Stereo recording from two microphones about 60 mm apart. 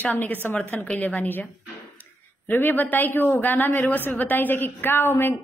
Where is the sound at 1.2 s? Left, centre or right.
Left.